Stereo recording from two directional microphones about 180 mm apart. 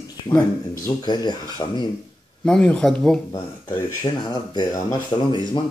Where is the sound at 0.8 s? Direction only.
25° left (ahead or behind).